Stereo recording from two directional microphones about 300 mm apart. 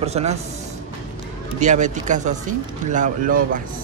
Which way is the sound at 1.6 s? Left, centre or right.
Right.